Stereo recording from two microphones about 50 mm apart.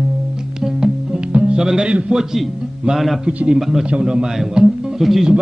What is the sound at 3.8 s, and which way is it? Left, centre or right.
Speech, right.